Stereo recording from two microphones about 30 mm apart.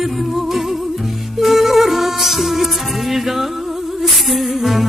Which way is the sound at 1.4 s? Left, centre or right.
Centre.